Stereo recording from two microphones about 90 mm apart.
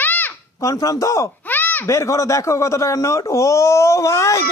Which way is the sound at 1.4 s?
20° left (ahead or behind).